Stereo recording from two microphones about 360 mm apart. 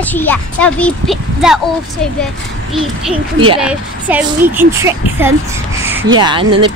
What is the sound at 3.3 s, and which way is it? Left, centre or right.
Speech, centre.